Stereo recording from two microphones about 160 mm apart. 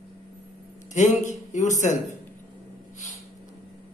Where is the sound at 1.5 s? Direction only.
50° left (ahead or behind).